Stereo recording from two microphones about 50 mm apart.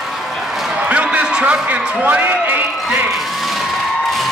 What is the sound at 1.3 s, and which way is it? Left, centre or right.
A man's voice, right.